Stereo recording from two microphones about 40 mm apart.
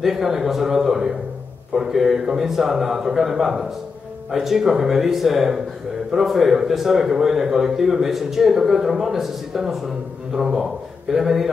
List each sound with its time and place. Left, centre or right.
0.0 s a man's voice: centre